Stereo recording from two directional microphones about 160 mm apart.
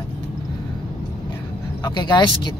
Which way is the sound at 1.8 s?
25° left (ahead or behind).